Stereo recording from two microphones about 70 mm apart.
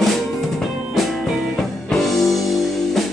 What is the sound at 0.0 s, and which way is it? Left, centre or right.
Music, centre.